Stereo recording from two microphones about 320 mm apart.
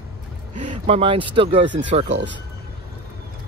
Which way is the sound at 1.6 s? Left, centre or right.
Right.